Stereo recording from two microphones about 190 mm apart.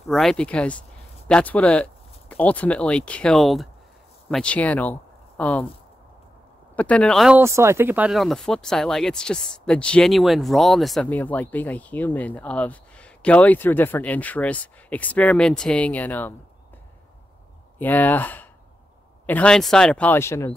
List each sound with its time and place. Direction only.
0.1 s speech: centre (ahead or behind)
6.7 s speech: 5° left (ahead or behind)
7.3 s speech: 15° right (ahead or behind); by 16.3 s 10° left (ahead or behind)
17.7 s speech: 10° left (ahead or behind)